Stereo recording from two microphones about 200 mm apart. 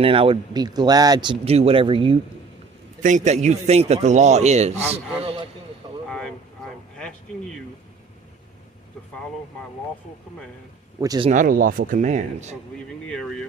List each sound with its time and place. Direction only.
0.0 s speech: 25° right (ahead or behind)
3.0 s speech: 40° right (ahead or behind)
6.0 s vehicle: 5° left (ahead or behind)
11.0 s speech: 20° right (ahead or behind)
11.2 s speech: 40° right (ahead or behind)
13.0 s speech: 5° left (ahead or behind)